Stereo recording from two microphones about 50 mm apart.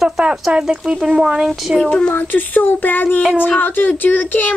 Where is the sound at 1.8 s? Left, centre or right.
Centre.